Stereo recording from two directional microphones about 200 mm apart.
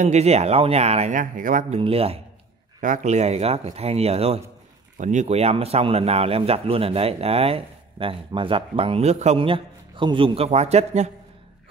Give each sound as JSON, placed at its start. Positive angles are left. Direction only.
{"t": 0.0, "sound": "speech", "side_deg": -35}
{"t": 1.8, "sound": "speech", "side_deg": -30}